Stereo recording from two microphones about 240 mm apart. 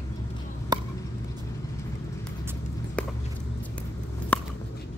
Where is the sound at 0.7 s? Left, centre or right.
Centre.